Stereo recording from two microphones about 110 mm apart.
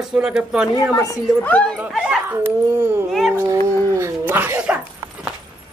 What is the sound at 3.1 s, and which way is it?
Speech, centre (ahead or behind).